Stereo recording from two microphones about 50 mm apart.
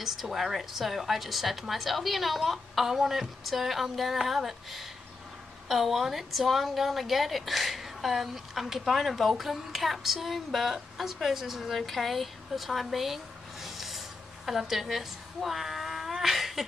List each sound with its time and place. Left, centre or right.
0.0 s a woman's voice: centre